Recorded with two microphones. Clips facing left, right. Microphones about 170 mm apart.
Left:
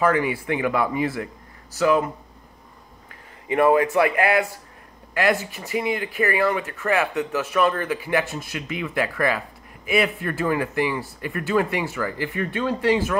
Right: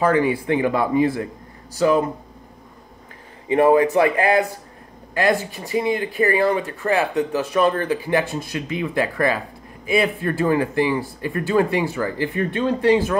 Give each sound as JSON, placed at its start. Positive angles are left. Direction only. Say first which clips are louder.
{"t": 0.0, "sound": "speech", "louder": "right 3 dB", "side_deg": -30}
{"t": 3.4, "sound": "speech", "louder": "right 3 dB", "side_deg": -25}